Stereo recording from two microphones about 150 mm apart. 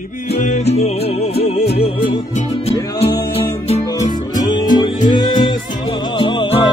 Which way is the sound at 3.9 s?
25° left (ahead or behind).